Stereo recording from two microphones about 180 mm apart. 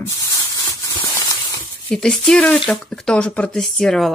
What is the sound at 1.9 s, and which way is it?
Speech, 5° left (ahead or behind).